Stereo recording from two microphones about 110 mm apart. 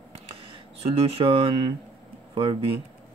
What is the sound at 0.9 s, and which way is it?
Speech, 60° right (ahead or behind).